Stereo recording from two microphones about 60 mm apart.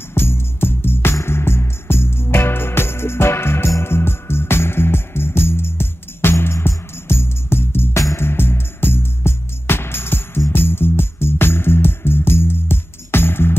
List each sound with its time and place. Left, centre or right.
0.1 s music: left